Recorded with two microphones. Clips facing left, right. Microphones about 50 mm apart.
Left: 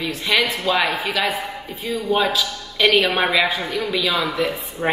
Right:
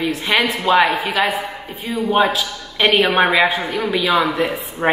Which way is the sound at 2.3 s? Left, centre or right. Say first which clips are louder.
Right 1 dB; right.